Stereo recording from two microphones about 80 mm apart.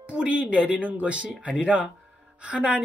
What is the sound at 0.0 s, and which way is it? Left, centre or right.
A woman's voice, centre.